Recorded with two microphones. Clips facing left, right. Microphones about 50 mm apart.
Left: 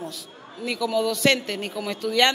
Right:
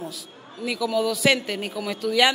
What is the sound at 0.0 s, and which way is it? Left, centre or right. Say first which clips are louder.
A man's voice: even; centre.